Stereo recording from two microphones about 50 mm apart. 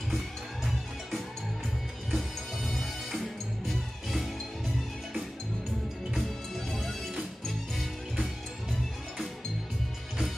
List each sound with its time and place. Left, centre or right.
2.0 s music: centre
6.1 s music: centre